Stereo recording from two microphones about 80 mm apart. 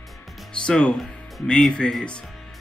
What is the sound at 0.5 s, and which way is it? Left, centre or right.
A man's voice, centre.